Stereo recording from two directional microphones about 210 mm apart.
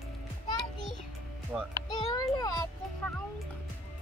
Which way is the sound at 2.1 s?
20° left (ahead or behind).